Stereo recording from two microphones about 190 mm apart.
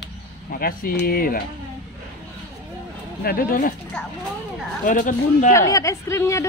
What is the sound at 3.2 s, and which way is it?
Speech, 50° left (ahead or behind).